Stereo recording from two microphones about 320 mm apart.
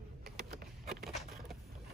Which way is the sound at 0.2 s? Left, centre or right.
Right.